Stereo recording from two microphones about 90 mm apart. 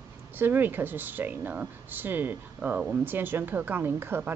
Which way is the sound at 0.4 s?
20° right (ahead or behind).